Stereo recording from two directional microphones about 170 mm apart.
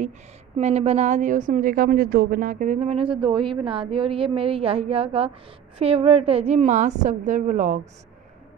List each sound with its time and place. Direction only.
0.6 s a woman's voice: 40° right (ahead or behind)